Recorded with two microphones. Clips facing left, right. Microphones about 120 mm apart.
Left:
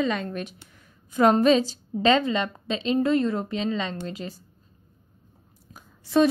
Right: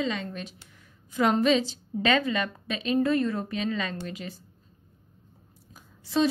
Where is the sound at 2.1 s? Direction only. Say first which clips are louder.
Left 4 dB; 25° left (ahead or behind).